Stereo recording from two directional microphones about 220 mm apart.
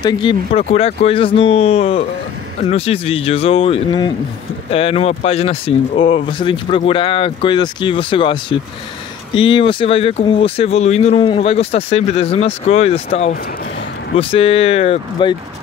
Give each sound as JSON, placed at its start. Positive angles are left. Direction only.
{"t": 0.0, "sound": "speech", "side_deg": 20}